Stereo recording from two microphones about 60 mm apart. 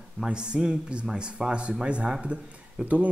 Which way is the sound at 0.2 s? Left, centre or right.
Centre.